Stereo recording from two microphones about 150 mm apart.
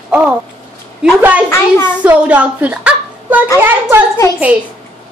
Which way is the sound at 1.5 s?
15° left (ahead or behind).